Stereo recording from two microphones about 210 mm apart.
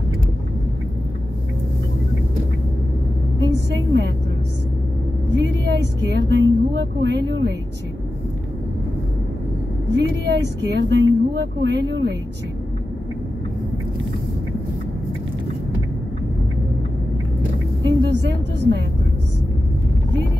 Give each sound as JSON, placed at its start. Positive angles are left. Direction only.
{"t": 3.3, "sound": "vehicle", "side_deg": -55}
{"t": 5.3, "sound": "speech", "side_deg": -55}
{"t": 9.8, "sound": "speech", "side_deg": -55}
{"t": 17.8, "sound": "a woman's voice", "side_deg": -55}